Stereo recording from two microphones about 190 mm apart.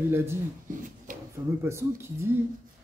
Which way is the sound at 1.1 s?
45° right (ahead or behind).